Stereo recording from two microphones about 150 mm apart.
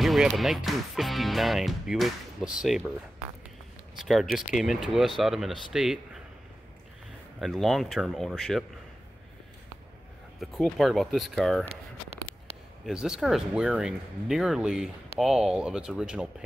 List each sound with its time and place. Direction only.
0.0 s music: centre (ahead or behind)
0.4 s speech: centre (ahead or behind)
4.0 s speech: centre (ahead or behind)
7.3 s speech: centre (ahead or behind)
10.4 s speech: centre (ahead or behind)
11.7 s a sound: 45° right (ahead or behind)
12.8 s speech: 5° right (ahead or behind)